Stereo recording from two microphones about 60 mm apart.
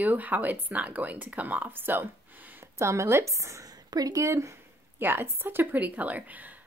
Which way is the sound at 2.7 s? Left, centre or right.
Right.